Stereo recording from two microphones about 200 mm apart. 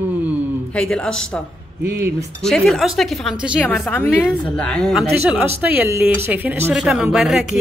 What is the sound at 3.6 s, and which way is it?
A woman's voice, 10° left (ahead or behind).